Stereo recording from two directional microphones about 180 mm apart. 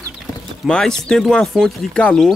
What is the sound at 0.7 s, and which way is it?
Speech, 5° left (ahead or behind).